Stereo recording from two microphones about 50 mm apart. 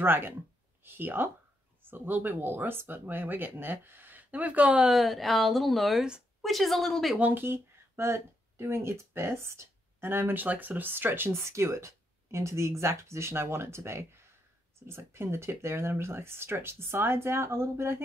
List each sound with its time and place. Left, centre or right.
0.0 s speech: right
4.8 s a woman's voice: centre
7.3 s speech: right
11.4 s speech: right
14.8 s speech: right